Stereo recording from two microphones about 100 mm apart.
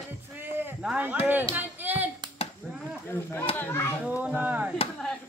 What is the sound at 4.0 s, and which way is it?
Speech, 15° right (ahead or behind).